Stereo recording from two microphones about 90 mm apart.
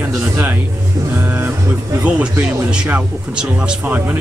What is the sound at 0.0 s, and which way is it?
Speech, 15° right (ahead or behind).